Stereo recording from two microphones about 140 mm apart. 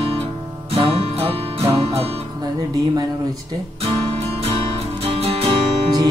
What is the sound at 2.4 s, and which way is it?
Music, 25° right (ahead or behind).